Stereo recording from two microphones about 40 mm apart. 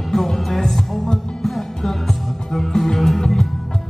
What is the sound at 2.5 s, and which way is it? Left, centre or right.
Music, centre.